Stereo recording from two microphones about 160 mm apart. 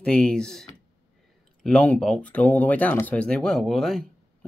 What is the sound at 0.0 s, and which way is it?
Speech, 5° left (ahead or behind).